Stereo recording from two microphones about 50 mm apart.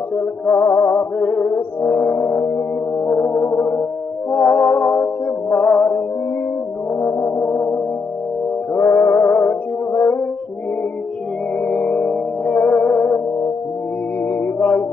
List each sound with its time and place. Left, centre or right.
0.1 s music: left
1.2 s music: left
1.8 s brass instrument: left
3.1 s music: left
7.0 s music: left
8.7 s music: left
9.2 s music: left
11.6 s music: left
14.4 s music: left